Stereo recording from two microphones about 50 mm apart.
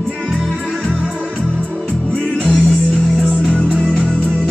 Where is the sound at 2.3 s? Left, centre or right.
Centre.